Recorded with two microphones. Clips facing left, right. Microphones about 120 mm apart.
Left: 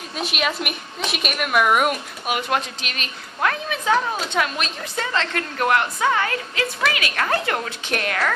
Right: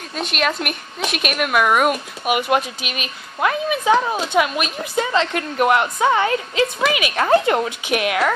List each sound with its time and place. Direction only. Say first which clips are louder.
0.1 s a woman's voice: right 3 dB; 5° left (ahead or behind)
2.2 s a woman's voice: right 5 dB; 10° right (ahead or behind)
7.8 s a woman's voice: right 5 dB; 10° right (ahead or behind)